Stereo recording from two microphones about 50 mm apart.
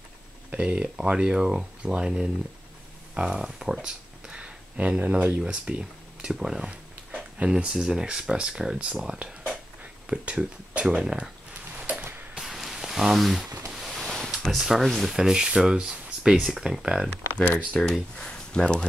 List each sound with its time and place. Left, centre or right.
0.6 s speech: right
4.7 s speech: right
5.4 s speech: right
11.7 s a sound: right
12.4 s a sound: centre
14.6 s speech: centre
15.1 s speech: centre
16.8 s speech: centre
17.7 s speech: centre
18.1 s speech: centre